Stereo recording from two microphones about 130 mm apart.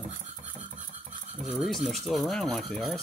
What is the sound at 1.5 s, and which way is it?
Speech, centre (ahead or behind).